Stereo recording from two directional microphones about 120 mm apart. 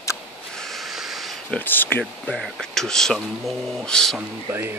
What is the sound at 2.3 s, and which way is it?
Speech, centre (ahead or behind).